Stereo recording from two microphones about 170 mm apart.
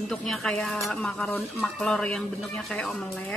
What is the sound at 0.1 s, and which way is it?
Speech, 5° left (ahead or behind).